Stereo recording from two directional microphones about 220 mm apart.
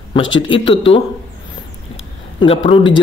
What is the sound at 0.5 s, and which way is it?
Speech, 20° left (ahead or behind).